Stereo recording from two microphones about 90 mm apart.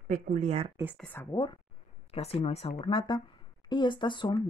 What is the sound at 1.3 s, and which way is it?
Speech, 55° left (ahead or behind).